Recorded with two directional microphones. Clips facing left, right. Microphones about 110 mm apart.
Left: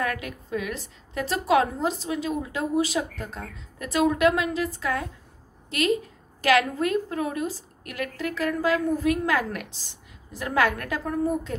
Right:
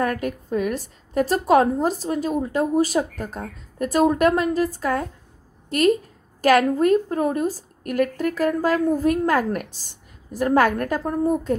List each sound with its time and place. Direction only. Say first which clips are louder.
0.0 s a woman's voice: right 6 dB; 45° right (ahead or behind)